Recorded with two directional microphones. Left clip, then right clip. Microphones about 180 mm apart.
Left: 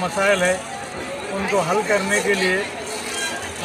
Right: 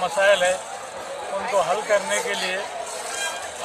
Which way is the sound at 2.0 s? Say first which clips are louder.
Left 5 dB; 70° right (ahead or behind).